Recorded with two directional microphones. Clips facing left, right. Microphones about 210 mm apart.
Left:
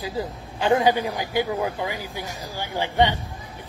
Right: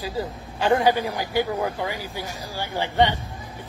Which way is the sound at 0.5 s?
20° left (ahead or behind).